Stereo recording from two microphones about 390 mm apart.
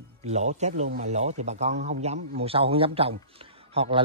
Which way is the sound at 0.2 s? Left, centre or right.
Centre.